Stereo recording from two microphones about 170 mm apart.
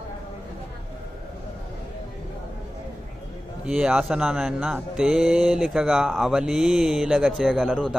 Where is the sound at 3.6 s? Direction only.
5° right (ahead or behind).